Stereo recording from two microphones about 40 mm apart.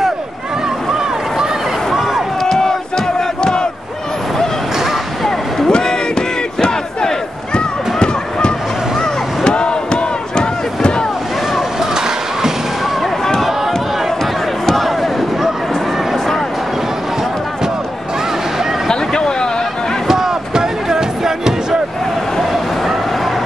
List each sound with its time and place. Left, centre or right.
2.4 s battle cry: centre
3.2 s crowd: centre
5.7 s battle cry: centre
7.5 s run: left
9.0 s crowd: left
11.5 s a sound: centre
14.7 s basketball bounce: centre
18.9 s a sound: centre
20.1 s music: centre
22.4 s bow-wow: centre